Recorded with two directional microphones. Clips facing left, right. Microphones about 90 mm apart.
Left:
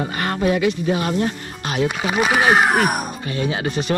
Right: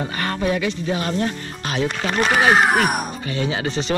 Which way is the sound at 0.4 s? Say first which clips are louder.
Left 4 dB; 25° left (ahead or behind).